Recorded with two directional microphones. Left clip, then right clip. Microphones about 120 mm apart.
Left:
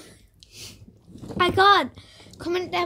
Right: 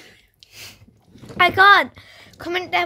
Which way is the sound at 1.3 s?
Centre (ahead or behind).